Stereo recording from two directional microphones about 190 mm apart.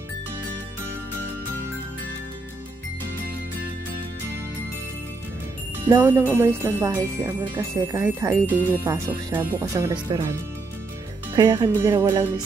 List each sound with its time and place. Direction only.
5.9 s speech: 10° right (ahead or behind)
11.3 s speech: 20° right (ahead or behind)